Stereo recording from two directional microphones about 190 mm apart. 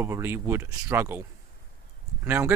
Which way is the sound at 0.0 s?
15° right (ahead or behind).